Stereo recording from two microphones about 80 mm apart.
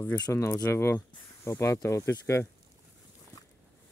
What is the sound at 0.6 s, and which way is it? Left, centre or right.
Speech, left.